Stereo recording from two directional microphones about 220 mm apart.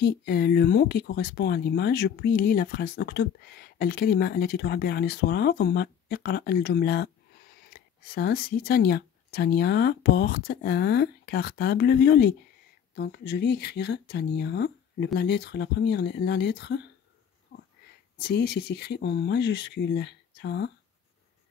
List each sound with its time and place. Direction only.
0.0 s speech: 45° left (ahead or behind)
17.5 s sniff: 65° left (ahead or behind)
18.2 s speech: 50° left (ahead or behind)